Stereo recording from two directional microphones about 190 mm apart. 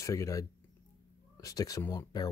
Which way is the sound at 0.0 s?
15° left (ahead or behind).